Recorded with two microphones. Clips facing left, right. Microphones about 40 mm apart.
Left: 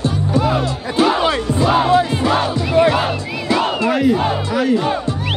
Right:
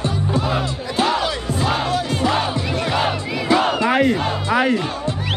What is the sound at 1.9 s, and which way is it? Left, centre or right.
Music, left.